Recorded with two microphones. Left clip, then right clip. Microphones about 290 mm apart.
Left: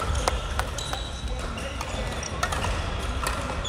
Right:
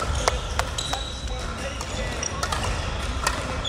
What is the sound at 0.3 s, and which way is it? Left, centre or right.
Ping, right.